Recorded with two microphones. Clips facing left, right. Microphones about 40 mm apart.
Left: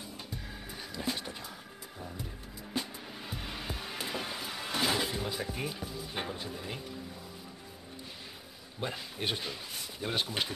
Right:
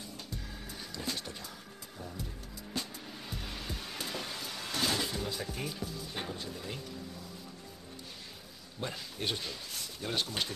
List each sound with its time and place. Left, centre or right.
0.9 s music: centre
8.8 s speech: centre